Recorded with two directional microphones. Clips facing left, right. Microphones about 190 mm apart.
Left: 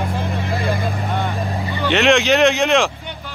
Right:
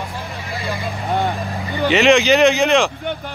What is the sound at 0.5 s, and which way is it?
Vehicle, 55° left (ahead or behind).